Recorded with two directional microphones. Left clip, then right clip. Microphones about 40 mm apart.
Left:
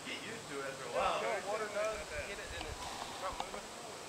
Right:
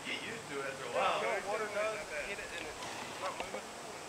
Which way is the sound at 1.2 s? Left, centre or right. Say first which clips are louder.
Right 2 dB; centre.